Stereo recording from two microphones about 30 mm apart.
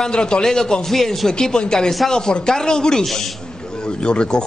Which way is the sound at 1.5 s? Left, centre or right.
Left.